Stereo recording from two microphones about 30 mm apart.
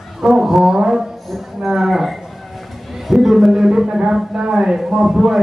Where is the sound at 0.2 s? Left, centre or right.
Centre.